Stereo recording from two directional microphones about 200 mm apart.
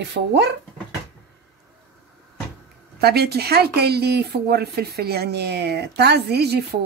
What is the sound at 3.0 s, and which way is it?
Speech, 50° right (ahead or behind).